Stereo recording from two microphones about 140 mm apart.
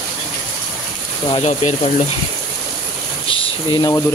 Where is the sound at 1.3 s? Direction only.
45° left (ahead or behind).